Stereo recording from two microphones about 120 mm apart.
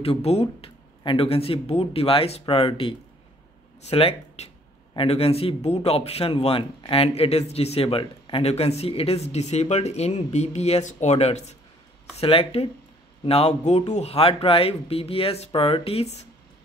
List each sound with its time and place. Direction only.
0.0 s a man's voice: 55° left (ahead or behind)
12.2 s a man's voice: 55° left (ahead or behind)